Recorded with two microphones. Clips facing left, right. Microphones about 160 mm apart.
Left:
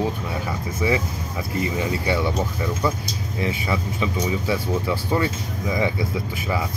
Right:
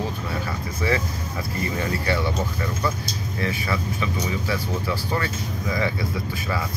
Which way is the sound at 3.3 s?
20° left (ahead or behind).